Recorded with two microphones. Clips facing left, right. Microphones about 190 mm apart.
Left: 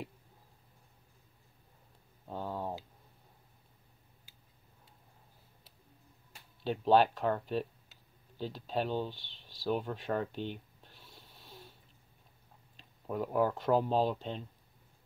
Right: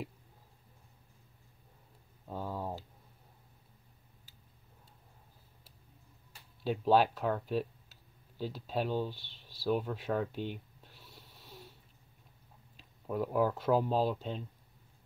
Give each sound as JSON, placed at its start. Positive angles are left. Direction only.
{"t": 2.3, "sound": "a sound", "side_deg": -5}
{"t": 6.6, "sound": "speech", "side_deg": -5}
{"t": 13.0, "sound": "speech", "side_deg": 0}